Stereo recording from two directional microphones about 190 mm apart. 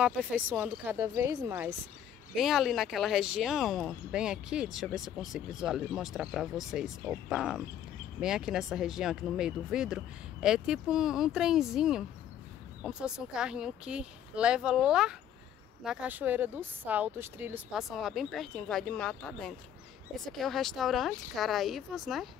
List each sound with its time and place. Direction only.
0.0 s speech: 5° right (ahead or behind)
2.3 s speech: centre (ahead or behind)